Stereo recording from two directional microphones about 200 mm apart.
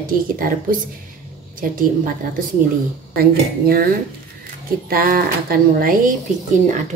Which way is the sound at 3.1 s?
50° right (ahead or behind).